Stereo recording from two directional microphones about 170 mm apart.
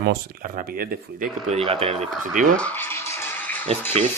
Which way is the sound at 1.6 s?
35° right (ahead or behind).